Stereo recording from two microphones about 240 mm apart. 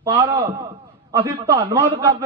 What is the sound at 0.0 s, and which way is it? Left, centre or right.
A man's voice, centre.